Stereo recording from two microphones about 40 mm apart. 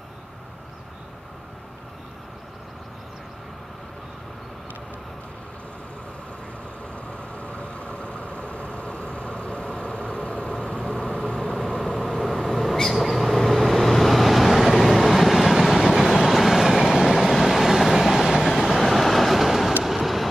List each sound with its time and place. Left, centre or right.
7.1 s vehicle: left
11.5 s vehicle: centre
19.8 s train: centre